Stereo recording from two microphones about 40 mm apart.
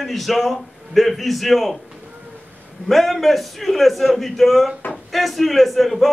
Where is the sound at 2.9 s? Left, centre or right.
Centre.